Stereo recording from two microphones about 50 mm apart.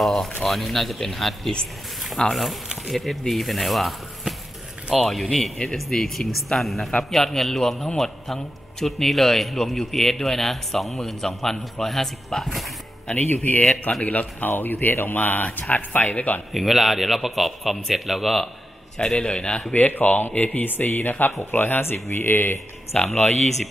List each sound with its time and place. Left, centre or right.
0.0 s a man's voice: centre
2.2 s speech: centre
2.9 s a man's voice: centre
13.1 s speech: left
16.5 s a man's voice: centre
18.9 s a man's voice: centre
19.7 s speech: left
22.9 s a man's voice: left